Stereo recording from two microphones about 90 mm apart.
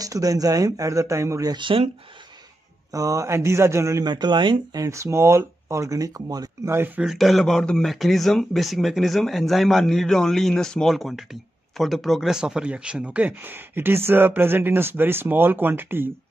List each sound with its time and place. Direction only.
0.0 s speech: 40° right (ahead or behind)
1.5 s speech: 70° right (ahead or behind)
2.9 s speech: 40° right (ahead or behind)
4.0 s speech: 55° right (ahead or behind)
4.7 s speech: 35° right (ahead or behind)
6.6 s speech: 30° right (ahead or behind)
7.0 s speech: centre (ahead or behind); by 16.1 s 25° right (ahead or behind)